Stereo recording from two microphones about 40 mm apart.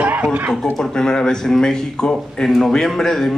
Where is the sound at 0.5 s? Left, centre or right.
Centre.